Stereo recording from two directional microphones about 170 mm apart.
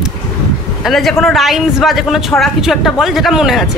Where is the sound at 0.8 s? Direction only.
Centre (ahead or behind).